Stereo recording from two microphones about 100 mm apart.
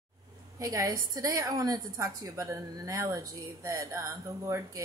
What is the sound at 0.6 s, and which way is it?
A woman's voice, 35° right (ahead or behind).